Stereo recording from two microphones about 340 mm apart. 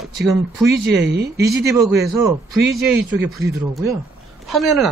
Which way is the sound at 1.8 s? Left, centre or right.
Centre.